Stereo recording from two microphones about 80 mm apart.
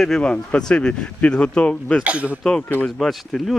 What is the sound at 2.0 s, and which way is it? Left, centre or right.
Speech, centre.